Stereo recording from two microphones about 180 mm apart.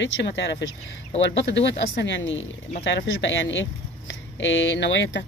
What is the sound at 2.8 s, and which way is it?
Speech, 80° left.